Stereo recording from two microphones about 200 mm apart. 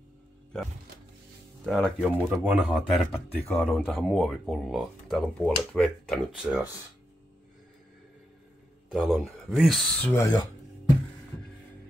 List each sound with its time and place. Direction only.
1.7 s speech: centre (ahead or behind)
8.9 s speech: centre (ahead or behind)
10.1 s a sound: 15° left (ahead or behind)